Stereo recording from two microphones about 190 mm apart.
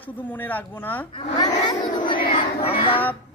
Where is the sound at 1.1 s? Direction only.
25° left (ahead or behind).